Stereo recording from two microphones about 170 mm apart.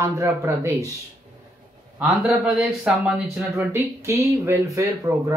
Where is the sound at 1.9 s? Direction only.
5° right (ahead or behind).